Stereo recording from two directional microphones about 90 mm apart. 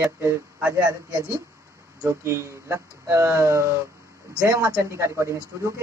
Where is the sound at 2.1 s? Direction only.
30° right (ahead or behind).